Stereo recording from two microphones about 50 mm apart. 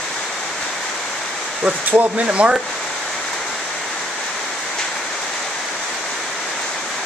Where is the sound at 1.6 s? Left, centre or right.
Right.